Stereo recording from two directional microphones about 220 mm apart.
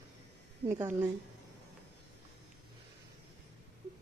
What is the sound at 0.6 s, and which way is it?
Speech, 40° right (ahead or behind).